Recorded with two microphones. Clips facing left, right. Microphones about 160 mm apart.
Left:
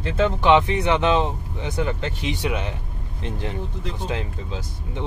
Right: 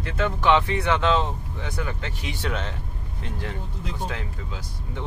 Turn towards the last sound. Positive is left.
turn(degrees=25)  # may be behind; listen again after turning